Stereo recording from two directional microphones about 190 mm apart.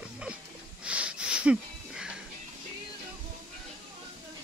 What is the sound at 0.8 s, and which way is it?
Wheeze, 5° right (ahead or behind).